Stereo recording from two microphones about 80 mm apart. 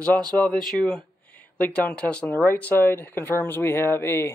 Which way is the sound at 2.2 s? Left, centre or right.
Left.